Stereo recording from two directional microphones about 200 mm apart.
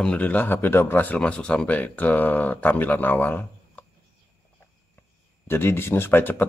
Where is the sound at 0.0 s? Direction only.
5° left (ahead or behind).